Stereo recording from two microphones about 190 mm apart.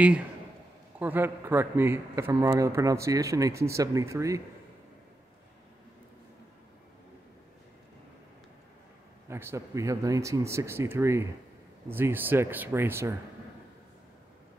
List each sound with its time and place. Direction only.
0.9 s a man's voice: 10° right (ahead or behind)
9.3 s a man's voice: 15° right (ahead or behind)